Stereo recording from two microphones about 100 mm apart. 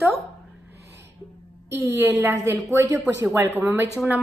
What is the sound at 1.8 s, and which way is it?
Speech, 25° right (ahead or behind).